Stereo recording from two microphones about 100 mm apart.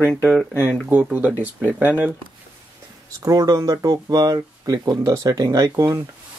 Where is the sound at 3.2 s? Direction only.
35° right (ahead or behind).